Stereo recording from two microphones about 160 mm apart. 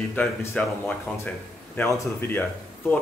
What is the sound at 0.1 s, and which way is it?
Speech, 10° left (ahead or behind).